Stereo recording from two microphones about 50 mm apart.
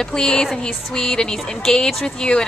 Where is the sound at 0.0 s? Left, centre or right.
Centre.